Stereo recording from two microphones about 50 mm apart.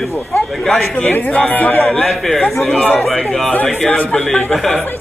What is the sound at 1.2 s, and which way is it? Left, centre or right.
Speech, left.